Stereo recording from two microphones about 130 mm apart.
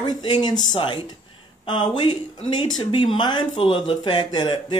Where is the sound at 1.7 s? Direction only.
35° left (ahead or behind).